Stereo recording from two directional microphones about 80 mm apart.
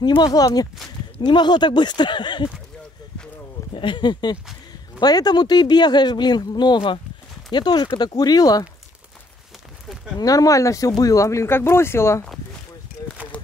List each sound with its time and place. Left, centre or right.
0.0 s speech: left
1.2 s speech: left
3.7 s speech: left
5.0 s speech: left
7.5 s speech: left
10.1 s speech: left